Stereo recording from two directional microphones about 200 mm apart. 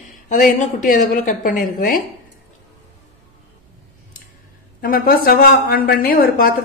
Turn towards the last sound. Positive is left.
turn(degrees=50)  # may be behind; listen again after turning